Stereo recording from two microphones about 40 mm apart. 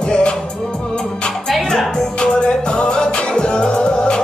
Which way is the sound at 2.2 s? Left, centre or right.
Left.